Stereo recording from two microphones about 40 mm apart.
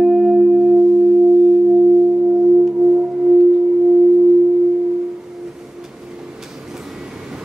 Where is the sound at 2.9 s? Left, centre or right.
Right.